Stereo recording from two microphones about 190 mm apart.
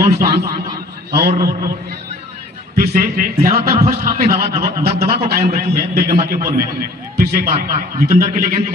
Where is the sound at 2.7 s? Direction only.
45° right (ahead or behind).